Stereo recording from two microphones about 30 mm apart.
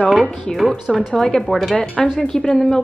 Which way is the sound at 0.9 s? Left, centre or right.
Centre.